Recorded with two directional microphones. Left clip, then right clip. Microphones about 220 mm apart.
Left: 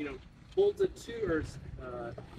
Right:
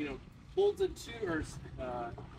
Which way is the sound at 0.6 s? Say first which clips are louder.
Left 2 dB; 25° right (ahead or behind).